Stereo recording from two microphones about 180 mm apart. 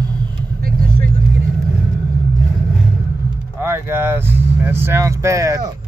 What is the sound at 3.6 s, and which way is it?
Speech, 15° right (ahead or behind).